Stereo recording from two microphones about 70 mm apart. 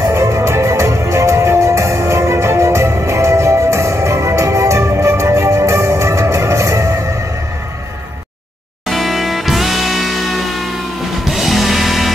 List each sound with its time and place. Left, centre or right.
0.1 s music: right
8.8 s music: centre